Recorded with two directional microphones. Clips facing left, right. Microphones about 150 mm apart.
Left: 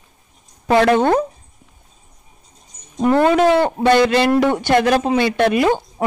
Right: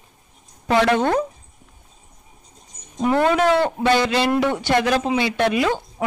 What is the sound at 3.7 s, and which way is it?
A man's voice, 55° left (ahead or behind).